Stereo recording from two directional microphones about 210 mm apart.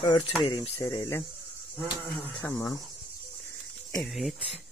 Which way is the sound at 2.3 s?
10° left (ahead or behind).